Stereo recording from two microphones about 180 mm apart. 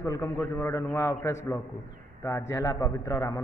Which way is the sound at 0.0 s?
15° left (ahead or behind).